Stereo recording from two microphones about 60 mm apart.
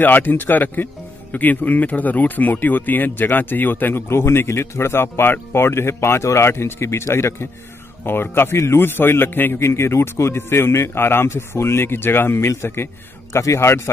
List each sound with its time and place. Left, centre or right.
0.0 s speech: left
4.1 s a man's voice: left
8.0 s a man's voice: left
13.3 s a man's voice: left
13.6 s a man's voice: left